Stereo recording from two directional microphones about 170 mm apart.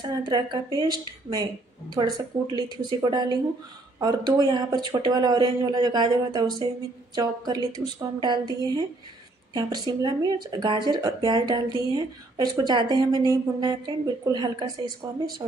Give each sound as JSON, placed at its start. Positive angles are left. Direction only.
{"t": 0.0, "sound": "speech", "side_deg": -25}